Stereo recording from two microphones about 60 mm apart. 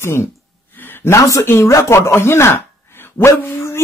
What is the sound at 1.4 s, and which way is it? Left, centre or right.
Speech, left.